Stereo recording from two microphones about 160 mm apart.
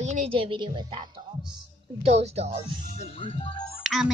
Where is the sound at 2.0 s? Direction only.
40° right (ahead or behind).